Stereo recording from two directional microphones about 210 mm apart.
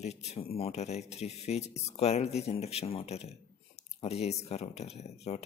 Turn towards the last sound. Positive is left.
turn(degrees=30)  # may be behind; listen again after turning